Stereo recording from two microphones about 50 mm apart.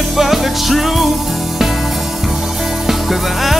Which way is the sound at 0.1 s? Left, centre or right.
Centre.